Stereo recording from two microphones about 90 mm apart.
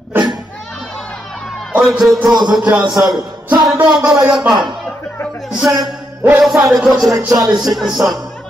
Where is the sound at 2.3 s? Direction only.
50° right (ahead or behind).